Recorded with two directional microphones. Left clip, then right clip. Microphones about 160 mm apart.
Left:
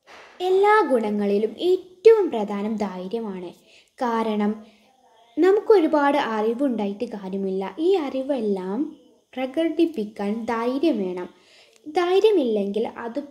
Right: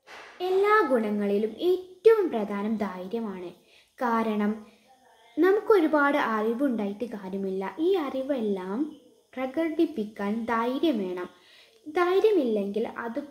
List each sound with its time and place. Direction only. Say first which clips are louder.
0.4 s a woman's voice: left 5 dB; 35° left (ahead or behind)